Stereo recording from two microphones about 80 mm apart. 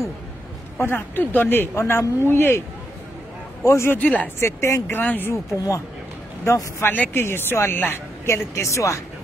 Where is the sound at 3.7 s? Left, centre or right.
Left.